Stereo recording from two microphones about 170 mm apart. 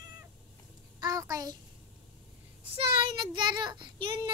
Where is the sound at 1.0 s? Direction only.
20° right (ahead or behind).